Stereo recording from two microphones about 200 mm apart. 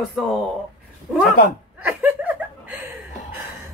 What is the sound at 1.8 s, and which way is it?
Laughter, 10° right (ahead or behind).